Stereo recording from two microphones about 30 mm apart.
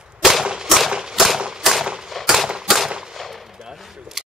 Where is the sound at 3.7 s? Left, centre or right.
Centre.